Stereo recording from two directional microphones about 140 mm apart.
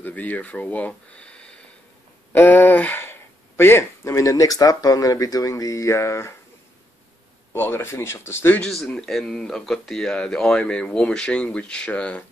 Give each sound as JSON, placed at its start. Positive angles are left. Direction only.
{"t": 0.0, "sound": "speech", "side_deg": 10}
{"t": 7.5, "sound": "speech", "side_deg": 15}
{"t": 8.6, "sound": "speech", "side_deg": 0}